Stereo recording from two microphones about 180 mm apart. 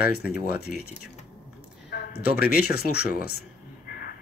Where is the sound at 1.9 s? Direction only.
65° left (ahead or behind).